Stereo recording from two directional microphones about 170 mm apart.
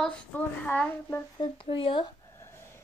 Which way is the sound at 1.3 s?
30° left (ahead or behind).